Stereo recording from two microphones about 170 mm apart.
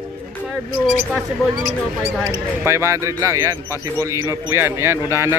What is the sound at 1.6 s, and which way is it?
Speech, 20° right (ahead or behind).